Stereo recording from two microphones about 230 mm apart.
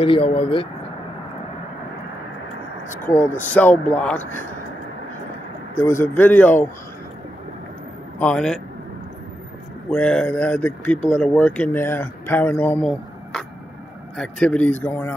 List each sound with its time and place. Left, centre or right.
0.0 s speech: left
2.9 s speech: centre
5.8 s speech: centre
8.2 s speech: centre
9.8 s speech: centre